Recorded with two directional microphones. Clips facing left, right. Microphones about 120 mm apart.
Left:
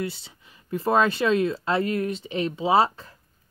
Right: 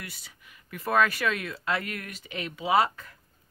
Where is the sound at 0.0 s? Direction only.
25° left (ahead or behind).